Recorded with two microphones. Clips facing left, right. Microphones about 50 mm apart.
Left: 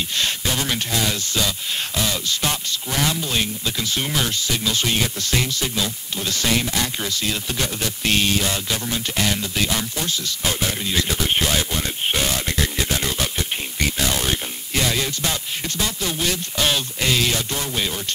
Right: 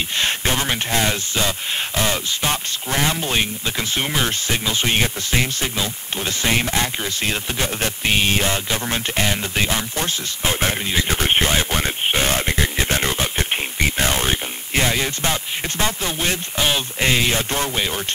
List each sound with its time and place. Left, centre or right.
0.2 s speech: right
8.0 s speech: right
12.1 s a sound: right
15.8 s speech: right
16.5 s speech: centre
17.0 s speech: right